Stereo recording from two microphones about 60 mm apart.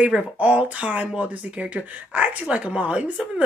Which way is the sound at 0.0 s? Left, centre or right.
Right.